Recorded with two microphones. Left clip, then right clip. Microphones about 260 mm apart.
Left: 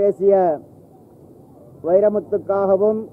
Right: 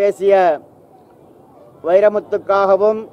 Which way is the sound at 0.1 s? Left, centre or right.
Centre.